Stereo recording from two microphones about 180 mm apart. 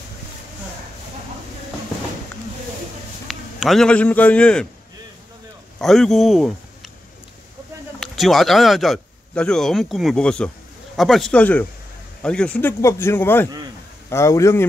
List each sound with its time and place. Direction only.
3.3 s a man's voice: centre (ahead or behind)
5.8 s speech: centre (ahead or behind)
8.0 s speech: centre (ahead or behind)